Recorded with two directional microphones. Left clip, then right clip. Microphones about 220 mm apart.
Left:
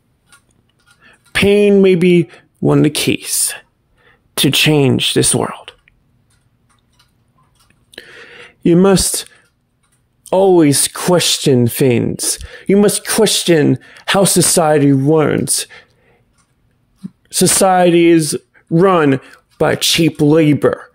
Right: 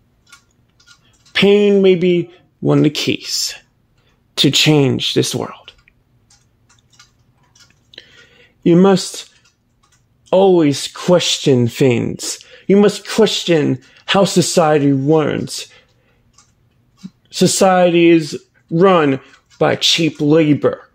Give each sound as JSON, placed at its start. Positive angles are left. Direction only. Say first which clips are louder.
{"t": 1.0, "sound": "speech", "louder": "even", "side_deg": 25}
{"t": 7.9, "sound": "a sound", "louder": "left 6 dB", "side_deg": 25}
{"t": 10.2, "sound": "speech", "louder": "left 1 dB", "side_deg": 30}
{"t": 17.3, "sound": "speech", "louder": "left 1 dB", "side_deg": 25}